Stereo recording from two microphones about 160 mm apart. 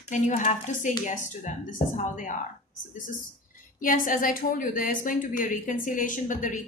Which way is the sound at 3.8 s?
55° left (ahead or behind).